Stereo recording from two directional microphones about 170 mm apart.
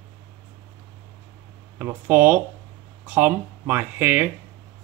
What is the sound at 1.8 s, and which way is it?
Speech, 10° right (ahead or behind).